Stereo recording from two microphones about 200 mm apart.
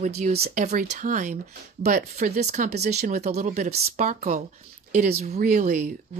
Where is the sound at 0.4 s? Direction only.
40° right (ahead or behind).